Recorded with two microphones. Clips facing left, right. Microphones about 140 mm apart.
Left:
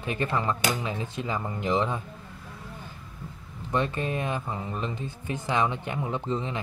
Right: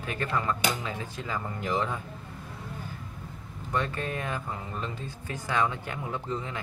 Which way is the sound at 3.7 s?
20° left (ahead or behind).